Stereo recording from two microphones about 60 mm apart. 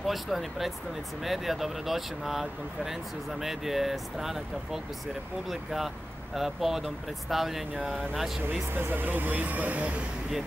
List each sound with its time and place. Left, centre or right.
0.0 s speech: centre
8.5 s speech: right